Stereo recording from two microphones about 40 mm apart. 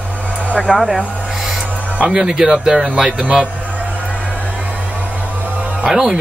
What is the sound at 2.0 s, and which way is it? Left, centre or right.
Speech, right.